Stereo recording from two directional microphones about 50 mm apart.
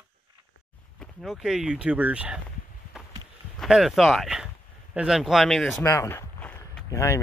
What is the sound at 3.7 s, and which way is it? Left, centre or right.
Speech, centre.